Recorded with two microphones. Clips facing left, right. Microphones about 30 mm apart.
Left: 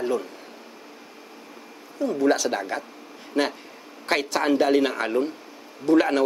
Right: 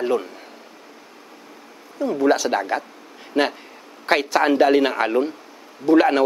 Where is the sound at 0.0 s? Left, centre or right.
Right.